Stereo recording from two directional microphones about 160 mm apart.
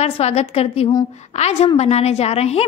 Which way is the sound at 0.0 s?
40° left (ahead or behind).